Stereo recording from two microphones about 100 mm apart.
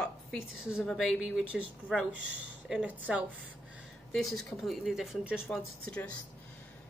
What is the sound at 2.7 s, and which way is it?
Speech, 10° right (ahead or behind).